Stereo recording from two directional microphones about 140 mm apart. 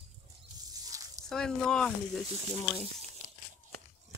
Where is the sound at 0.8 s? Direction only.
25° right (ahead or behind).